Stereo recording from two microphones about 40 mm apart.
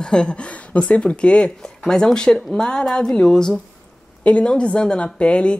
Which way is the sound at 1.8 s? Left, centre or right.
Centre.